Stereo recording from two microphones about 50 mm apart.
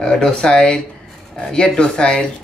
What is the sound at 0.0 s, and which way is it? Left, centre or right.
Speech, centre.